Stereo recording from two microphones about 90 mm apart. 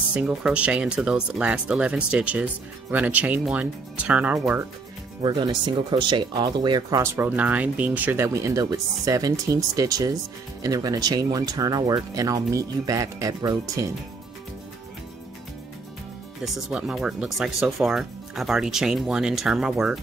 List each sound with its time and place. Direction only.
0.1 s speech: 15° right (ahead or behind)
5.2 s speech: 60° right (ahead or behind)
7.0 s speech: 25° right (ahead or behind)
8.3 s speech: 35° right (ahead or behind)
12.2 s speech: 40° right (ahead or behind)
16.4 s speech: 5° right (ahead or behind)